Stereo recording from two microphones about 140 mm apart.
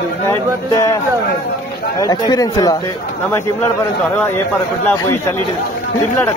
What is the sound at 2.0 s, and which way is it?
Speech, 25° left (ahead or behind).